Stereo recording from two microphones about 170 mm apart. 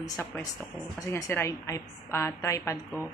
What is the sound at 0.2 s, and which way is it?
A woman's voice, 15° left (ahead or behind).